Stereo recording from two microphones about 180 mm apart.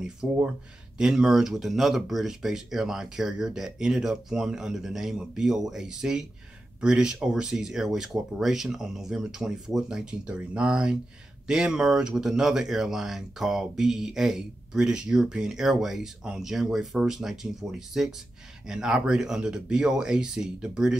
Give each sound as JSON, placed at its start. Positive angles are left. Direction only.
{"t": 0.0, "sound": "speech", "side_deg": -5}